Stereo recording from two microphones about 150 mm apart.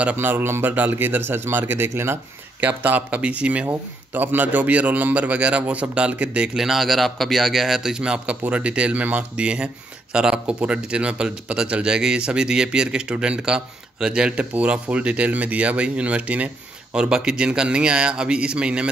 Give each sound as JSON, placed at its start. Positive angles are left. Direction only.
{"t": 0.0, "sound": "speech", "side_deg": -10}